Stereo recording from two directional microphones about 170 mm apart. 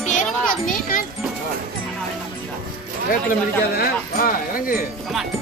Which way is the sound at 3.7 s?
60° left (ahead or behind).